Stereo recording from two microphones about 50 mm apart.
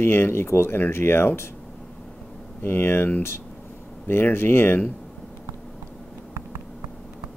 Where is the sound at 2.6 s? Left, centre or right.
Left.